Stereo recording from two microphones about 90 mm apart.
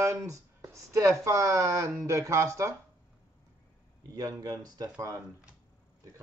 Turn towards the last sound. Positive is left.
turn(degrees=-45)  # may be behind; listen again after turning